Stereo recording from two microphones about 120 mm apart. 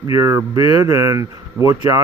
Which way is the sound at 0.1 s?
25° right (ahead or behind).